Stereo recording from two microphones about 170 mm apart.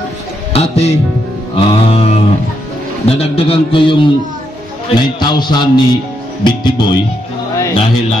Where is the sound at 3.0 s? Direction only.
35° left (ahead or behind).